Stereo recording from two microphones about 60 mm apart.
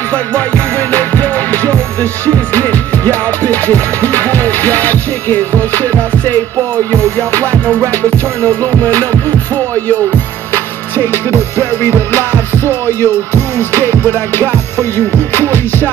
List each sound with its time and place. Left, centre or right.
0.1 s music: left
10.5 s music: left